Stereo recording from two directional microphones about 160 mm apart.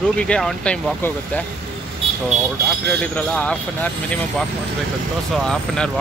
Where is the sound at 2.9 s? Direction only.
5° left (ahead or behind).